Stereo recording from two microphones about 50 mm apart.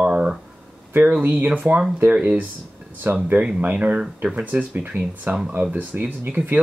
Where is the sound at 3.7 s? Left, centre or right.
Right.